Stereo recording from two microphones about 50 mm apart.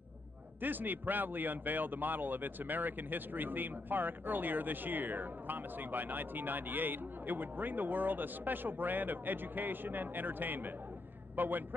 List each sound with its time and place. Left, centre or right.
0.6 s a man's voice: right